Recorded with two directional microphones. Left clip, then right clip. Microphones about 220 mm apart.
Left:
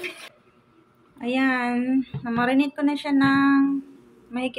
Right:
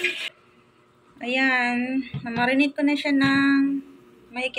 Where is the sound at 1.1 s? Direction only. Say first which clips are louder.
Right 2 dB; 50° left (ahead or behind).